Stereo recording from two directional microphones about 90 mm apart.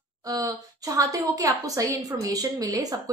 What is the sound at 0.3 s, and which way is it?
A woman's voice, 40° right (ahead or behind).